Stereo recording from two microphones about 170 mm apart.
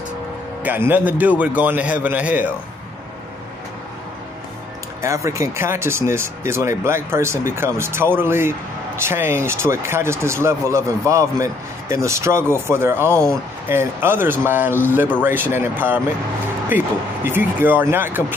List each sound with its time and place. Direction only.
0.7 s a man's voice: 10° right (ahead or behind)
5.0 s a man's voice: 15° right (ahead or behind)
16.7 s a sound: 10° right (ahead or behind)
17.3 s a man's voice: 10° right (ahead or behind)